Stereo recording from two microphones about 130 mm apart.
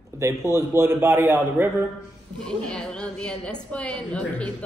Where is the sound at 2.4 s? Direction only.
5° left (ahead or behind).